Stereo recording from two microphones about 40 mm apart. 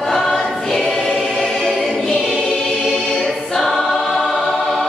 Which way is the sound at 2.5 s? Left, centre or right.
Centre.